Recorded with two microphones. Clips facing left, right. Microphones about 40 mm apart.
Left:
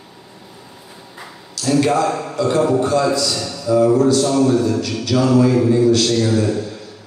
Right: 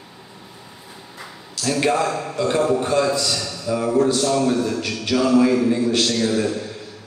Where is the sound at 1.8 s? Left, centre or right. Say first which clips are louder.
Left 2 dB; right.